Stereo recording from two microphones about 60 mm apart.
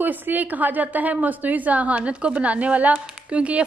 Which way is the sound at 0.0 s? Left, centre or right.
Right.